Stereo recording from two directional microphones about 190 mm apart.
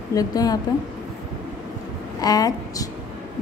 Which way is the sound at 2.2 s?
20° left (ahead or behind).